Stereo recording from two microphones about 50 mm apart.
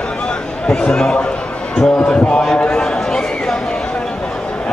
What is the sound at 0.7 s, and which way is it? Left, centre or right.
Speech, centre.